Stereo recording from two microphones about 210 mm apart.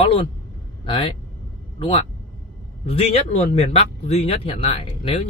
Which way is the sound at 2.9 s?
30° left (ahead or behind).